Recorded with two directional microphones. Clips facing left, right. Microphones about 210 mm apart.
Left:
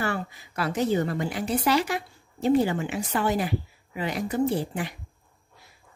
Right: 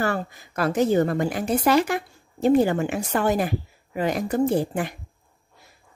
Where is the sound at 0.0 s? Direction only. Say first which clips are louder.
Right 4 dB; 45° right (ahead or behind).